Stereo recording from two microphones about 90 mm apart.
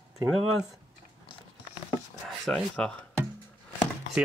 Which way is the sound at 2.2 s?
5° left (ahead or behind).